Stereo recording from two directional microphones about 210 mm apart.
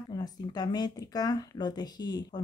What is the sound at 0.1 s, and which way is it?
Speech, 20° left (ahead or behind).